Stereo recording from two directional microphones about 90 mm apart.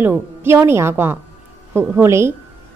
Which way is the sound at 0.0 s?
25° right (ahead or behind).